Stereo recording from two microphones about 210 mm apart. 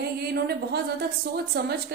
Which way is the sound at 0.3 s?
50° right (ahead or behind).